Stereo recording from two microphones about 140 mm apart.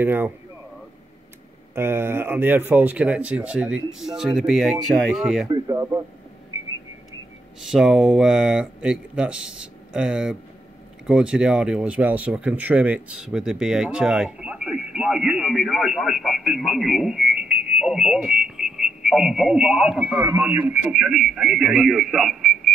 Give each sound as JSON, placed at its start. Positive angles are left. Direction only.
{"t": 0.0, "sound": "speech", "side_deg": -15}
{"t": 1.8, "sound": "speech", "side_deg": -15}
{"t": 5.5, "sound": "speech", "side_deg": -25}
{"t": 7.7, "sound": "speech", "side_deg": -5}
{"t": 20.2, "sound": "speech", "side_deg": -20}
{"t": 20.4, "sound": "speech", "side_deg": -10}
{"t": 20.9, "sound": "speech", "side_deg": 0}